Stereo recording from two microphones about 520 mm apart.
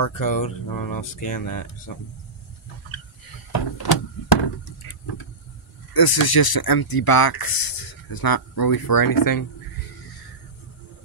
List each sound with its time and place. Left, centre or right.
0.0 s speech: left
3.5 s door: left
5.9 s speech: left